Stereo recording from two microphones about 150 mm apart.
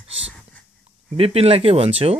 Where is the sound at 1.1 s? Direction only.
40° right (ahead or behind).